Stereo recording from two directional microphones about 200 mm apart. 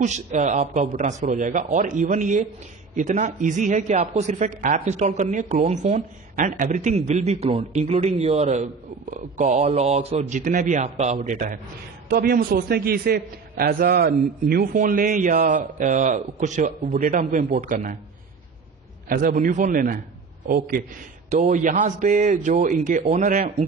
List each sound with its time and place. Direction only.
0.0 s a woman's voice: 35° right (ahead or behind)
19.0 s a man's voice: 45° right (ahead or behind)